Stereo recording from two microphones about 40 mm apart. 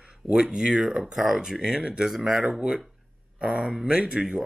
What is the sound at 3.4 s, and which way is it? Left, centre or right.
Speech, right.